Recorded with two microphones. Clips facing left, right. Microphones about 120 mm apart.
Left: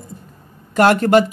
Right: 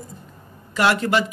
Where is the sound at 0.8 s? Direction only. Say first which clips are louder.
Left 7 dB; 45° left (ahead or behind).